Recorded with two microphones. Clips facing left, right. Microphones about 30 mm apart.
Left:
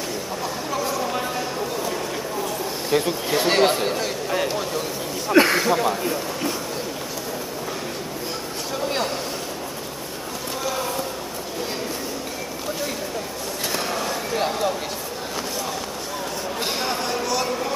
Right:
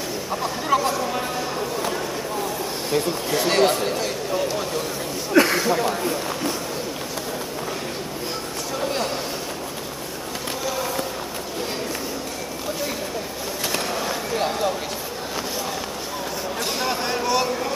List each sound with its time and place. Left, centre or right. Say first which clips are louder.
0.9 s a sound: even; centre
2.9 s speech: left 2 dB; centre
5.3 s speech: left 1 dB; centre
13.7 s basketball bounce: left 1 dB; centre
17.0 s vehicle: right 2 dB; centre
17.5 s a sound: even; centre